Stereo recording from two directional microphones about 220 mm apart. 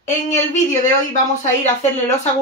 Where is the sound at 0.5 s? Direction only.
35° left (ahead or behind).